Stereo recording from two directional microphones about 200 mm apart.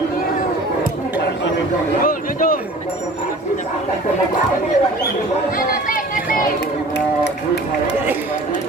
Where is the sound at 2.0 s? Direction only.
45° left (ahead or behind).